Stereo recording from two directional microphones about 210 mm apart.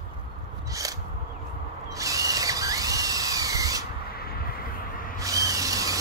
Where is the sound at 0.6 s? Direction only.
15° right (ahead or behind).